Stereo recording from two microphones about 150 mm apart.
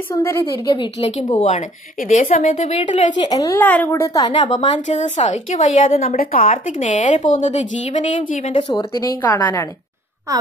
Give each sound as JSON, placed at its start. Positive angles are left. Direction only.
{"t": 0.1, "sound": "a woman's voice", "side_deg": 20}
{"t": 0.7, "sound": "a woman's voice", "side_deg": 40}
{"t": 3.2, "sound": "a woman's voice", "side_deg": 25}
{"t": 3.5, "sound": "a woman's voice", "side_deg": 10}
{"t": 3.9, "sound": "a woman's voice", "side_deg": 20}
{"t": 4.6, "sound": "a woman's voice", "side_deg": 55}
{"t": 6.1, "sound": "a woman's voice", "side_deg": 65}
{"t": 8.5, "sound": "a woman's voice", "side_deg": 30}
{"t": 10.3, "sound": "a woman's voice", "side_deg": -20}